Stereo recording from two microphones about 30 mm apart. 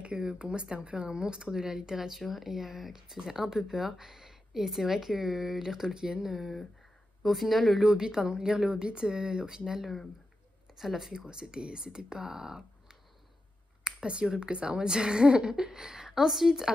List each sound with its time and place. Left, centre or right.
0.0 s speech: right
3.7 s speech: centre
7.8 s speech: right
11.1 s speech: right
13.9 s a sound: centre
14.4 s speech: right
16.1 s speech: centre